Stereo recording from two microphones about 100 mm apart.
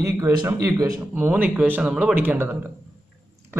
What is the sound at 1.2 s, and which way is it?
Speech, 15° right (ahead or behind).